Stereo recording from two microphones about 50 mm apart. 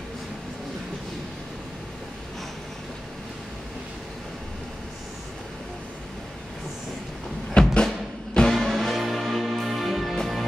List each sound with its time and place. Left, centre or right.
7.5 s music: centre
8.5 s music: centre